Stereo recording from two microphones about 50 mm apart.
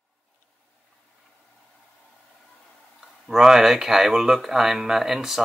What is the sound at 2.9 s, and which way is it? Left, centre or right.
Speech, centre.